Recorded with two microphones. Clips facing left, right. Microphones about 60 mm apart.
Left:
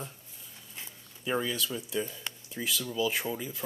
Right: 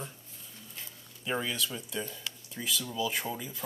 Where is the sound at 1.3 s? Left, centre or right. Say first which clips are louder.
Left 2 dB; centre.